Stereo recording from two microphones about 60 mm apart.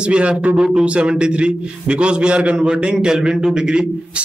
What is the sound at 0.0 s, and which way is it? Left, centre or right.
A man's voice, centre.